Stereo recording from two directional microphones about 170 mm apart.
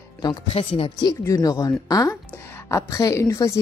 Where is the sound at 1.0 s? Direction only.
20° left (ahead or behind).